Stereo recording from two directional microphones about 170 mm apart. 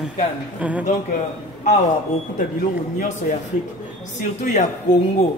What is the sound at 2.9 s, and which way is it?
Speech, 50° left (ahead or behind).